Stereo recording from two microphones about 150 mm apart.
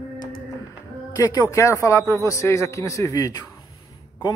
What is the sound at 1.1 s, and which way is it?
A man's voice, 20° left (ahead or behind).